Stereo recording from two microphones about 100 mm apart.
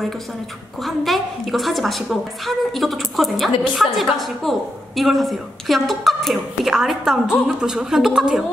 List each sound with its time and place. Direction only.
0.8 s a woman's voice: centre (ahead or behind)